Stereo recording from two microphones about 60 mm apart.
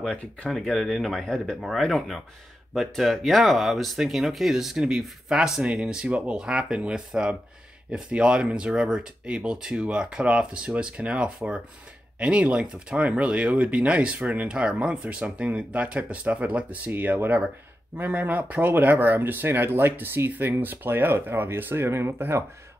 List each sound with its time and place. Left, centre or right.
0.0 s speech: centre; by 16.9 s right
16.9 s speech: right